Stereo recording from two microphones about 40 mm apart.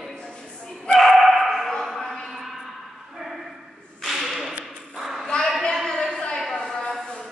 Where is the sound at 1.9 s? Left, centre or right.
Centre.